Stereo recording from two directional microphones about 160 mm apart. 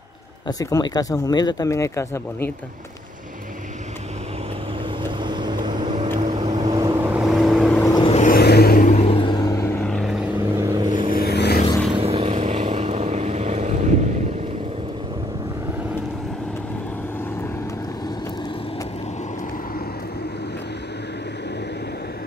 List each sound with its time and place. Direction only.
0.5 s speech: 25° left (ahead or behind)
5.2 s vehicle: 30° right (ahead or behind)
7.0 s vehicle: 5° right (ahead or behind)
8.1 s vehicle: 50° left (ahead or behind)
8.4 s vehicle: 85° left
8.9 s vehicle: 40° left (ahead or behind)
9.8 s vehicle: 5° left (ahead or behind)
10.6 s vehicle: 25° right (ahead or behind)
11.1 s vehicle: 85° left
11.9 s vehicle: 40° right (ahead or behind)